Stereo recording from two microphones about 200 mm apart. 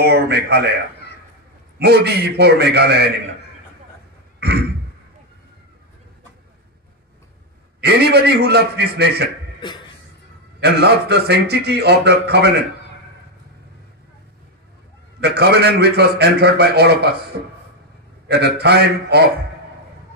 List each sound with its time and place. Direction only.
0.0 s a man's voice: 55° right (ahead or behind)
1.8 s a man's voice: 55° right (ahead or behind)
4.4 s throat clearing: 55° right (ahead or behind)
7.8 s a man's voice: 55° right (ahead or behind)
9.6 s a sound: 25° left (ahead or behind)
10.6 s a man's voice: 55° right (ahead or behind)
15.1 s a man's voice: 55° right (ahead or behind)
18.3 s a man's voice: 55° right (ahead or behind)